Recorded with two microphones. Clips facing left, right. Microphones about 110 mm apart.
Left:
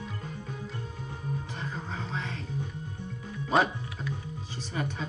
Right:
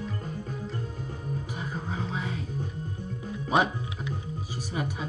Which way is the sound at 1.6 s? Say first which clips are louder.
Right 3 dB; 10° right (ahead or behind).